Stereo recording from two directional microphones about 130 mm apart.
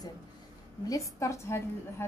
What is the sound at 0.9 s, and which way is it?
A woman's voice, 25° left (ahead or behind).